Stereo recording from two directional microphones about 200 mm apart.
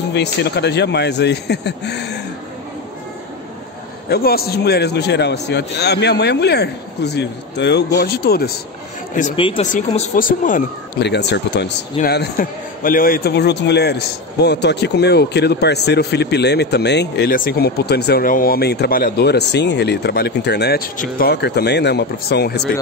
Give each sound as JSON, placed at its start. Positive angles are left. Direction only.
{"t": 0.1, "sound": "speech", "side_deg": 60}
{"t": 4.1, "sound": "speech", "side_deg": 50}
{"t": 9.4, "sound": "speech", "side_deg": 25}
{"t": 11.0, "sound": "speech", "side_deg": 55}